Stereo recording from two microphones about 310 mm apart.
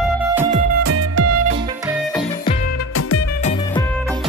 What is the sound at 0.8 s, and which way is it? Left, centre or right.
Music, right.